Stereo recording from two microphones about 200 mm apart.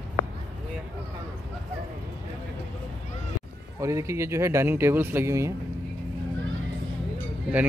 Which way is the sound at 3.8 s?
15° right (ahead or behind).